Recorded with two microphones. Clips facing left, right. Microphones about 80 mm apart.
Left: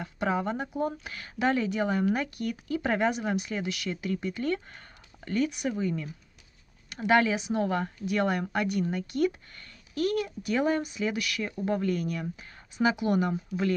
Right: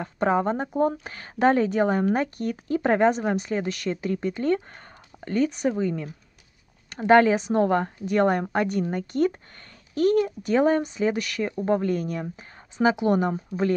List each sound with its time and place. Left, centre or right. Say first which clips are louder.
0.0 s speech: right 6 dB; right